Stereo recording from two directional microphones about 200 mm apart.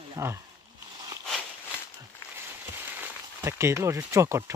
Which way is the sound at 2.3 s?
10° right (ahead or behind).